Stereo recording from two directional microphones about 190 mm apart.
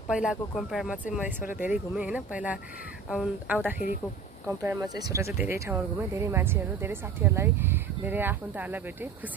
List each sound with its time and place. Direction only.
0.1 s speech: 5° right (ahead or behind)